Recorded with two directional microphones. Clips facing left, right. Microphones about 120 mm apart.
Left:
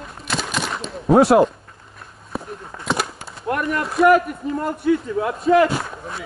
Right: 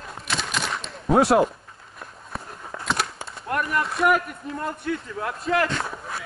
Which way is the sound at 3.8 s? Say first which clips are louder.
Left 10 dB; centre (ahead or behind).